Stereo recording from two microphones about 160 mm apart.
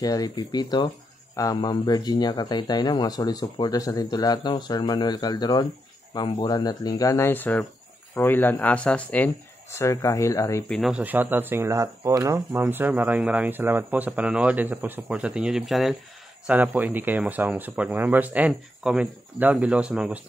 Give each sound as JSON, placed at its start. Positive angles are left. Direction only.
{"t": 0.0, "sound": "speech", "side_deg": 25}
{"t": 10.7, "sound": "speech", "side_deg": -5}